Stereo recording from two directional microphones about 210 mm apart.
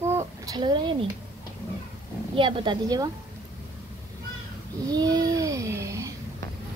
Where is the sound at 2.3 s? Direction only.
25° right (ahead or behind).